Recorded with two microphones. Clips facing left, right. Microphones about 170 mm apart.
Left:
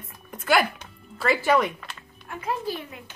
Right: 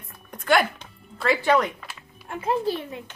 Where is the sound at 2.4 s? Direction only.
25° right (ahead or behind).